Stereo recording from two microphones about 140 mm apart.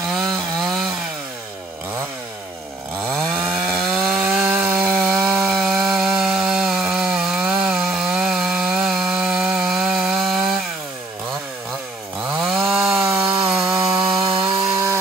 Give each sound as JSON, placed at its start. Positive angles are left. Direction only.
{"t": 0.3, "sound": "chainsaw", "side_deg": 0}
{"t": 3.3, "sound": "wood", "side_deg": -5}
{"t": 5.2, "sound": "chainsaw", "side_deg": -5}
{"t": 12.4, "sound": "chainsaw", "side_deg": 0}
{"t": 13.0, "sound": "sawing", "side_deg": -25}
{"t": 13.5, "sound": "sawing", "side_deg": -5}
{"t": 14.2, "sound": "sawing", "side_deg": -35}